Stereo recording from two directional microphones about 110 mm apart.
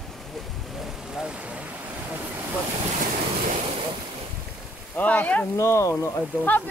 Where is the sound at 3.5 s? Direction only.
65° right (ahead or behind).